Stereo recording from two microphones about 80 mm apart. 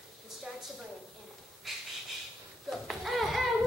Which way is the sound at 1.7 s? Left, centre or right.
Centre.